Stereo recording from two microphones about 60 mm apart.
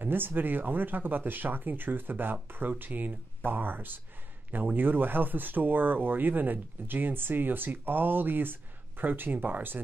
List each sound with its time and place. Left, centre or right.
0.0 s speech: right